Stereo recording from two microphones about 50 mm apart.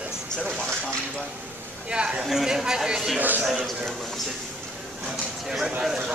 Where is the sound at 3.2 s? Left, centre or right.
Right.